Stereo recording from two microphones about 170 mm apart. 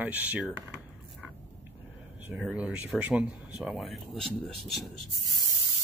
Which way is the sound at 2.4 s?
5° right (ahead or behind).